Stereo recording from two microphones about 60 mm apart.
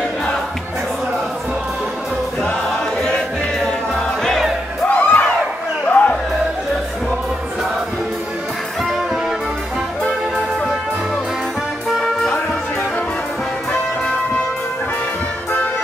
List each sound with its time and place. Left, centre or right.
3.0 s music: centre
4.8 s music: left